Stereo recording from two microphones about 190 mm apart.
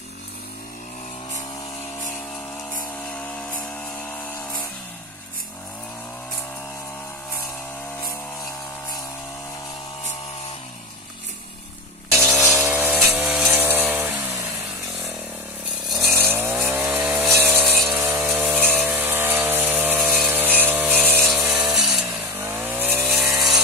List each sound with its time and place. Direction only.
3.1 s a sound: 10° left (ahead or behind)
12.4 s chainsaw: 10° right (ahead or behind)
16.1 s chainsaw: 10° right (ahead or behind)
17.4 s a sound: 10° right (ahead or behind)
21.7 s sawing: centre (ahead or behind)
22.3 s chainsaw: 10° right (ahead or behind)